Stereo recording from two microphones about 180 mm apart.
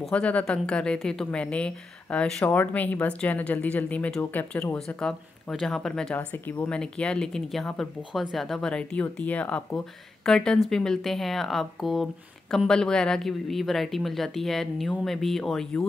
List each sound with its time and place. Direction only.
0.0 s a woman's voice: 5° left (ahead or behind)